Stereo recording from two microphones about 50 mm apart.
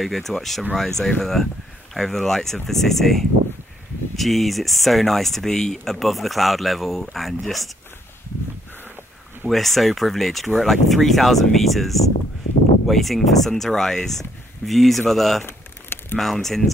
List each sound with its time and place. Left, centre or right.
0.0 s speech: centre
9.5 s speech: centre
15.4 s a sound: left
16.2 s speech: centre